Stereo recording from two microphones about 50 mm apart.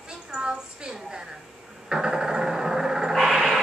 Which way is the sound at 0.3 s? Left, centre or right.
Centre.